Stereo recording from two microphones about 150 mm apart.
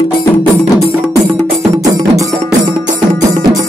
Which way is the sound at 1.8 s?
25° right (ahead or behind).